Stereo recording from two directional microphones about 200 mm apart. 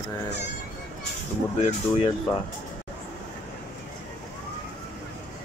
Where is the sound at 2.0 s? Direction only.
25° left (ahead or behind).